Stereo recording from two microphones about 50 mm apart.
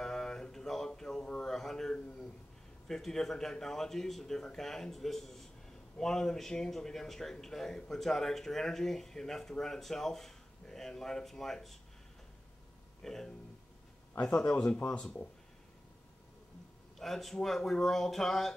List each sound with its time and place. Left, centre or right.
0.0 s a sound: centre
2.9 s speech: centre
13.0 s speech: centre
17.0 s speech: centre